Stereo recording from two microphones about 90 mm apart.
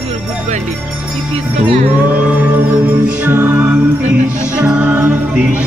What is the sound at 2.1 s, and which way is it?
Music, 20° right (ahead or behind).